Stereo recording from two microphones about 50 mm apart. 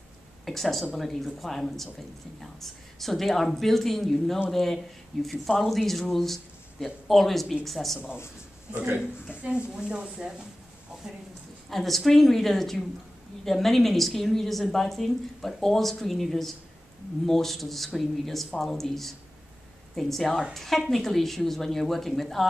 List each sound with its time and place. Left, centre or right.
0.5 s speech: centre
9.8 s speech: centre
11.7 s speech: centre